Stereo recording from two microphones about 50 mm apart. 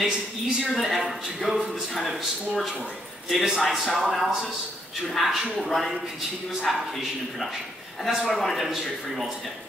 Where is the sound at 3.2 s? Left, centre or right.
Centre.